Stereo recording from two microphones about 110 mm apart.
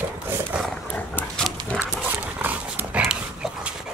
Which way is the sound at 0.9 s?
15° left (ahead or behind).